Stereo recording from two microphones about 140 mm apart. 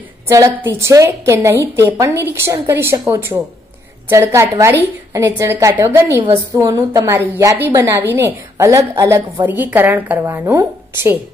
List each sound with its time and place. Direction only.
0.3 s a woman's voice: 20° right (ahead or behind)